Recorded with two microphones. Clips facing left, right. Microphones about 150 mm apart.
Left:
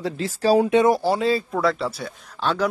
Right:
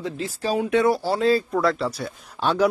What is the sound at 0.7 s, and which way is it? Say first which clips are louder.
Speech: left 2 dB; 20° left (ahead or behind).